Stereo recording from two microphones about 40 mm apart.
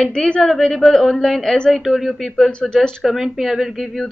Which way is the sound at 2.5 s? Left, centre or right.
Left.